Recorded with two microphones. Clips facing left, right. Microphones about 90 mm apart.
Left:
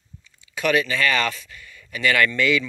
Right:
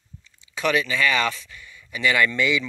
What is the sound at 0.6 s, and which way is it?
Speech, 20° right (ahead or behind).